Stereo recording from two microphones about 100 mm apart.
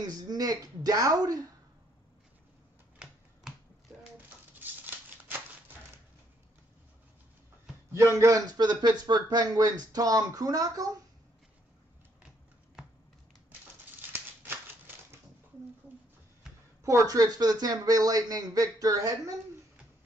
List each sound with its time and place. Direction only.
0.0 s speech: 40° right (ahead or behind)
4.6 s a sound: 20° right (ahead or behind)
8.2 s speech: 35° right (ahead or behind)
16.8 s speech: 30° right (ahead or behind)